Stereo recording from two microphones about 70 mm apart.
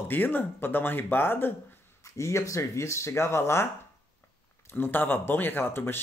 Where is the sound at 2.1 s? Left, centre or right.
Left.